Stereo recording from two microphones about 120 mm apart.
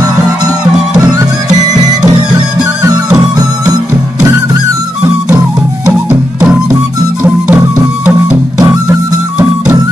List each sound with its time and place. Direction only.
6.0 s music: 15° right (ahead or behind)
8.5 s music: 30° right (ahead or behind)